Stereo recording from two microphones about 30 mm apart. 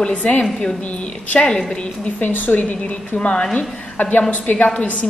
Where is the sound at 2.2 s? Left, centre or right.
Left.